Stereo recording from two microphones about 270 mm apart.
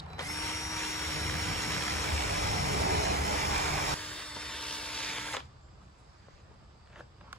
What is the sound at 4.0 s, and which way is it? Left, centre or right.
Printer, centre.